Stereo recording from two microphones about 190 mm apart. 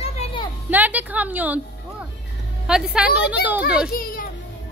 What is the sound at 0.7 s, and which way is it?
Speech, 10° right (ahead or behind).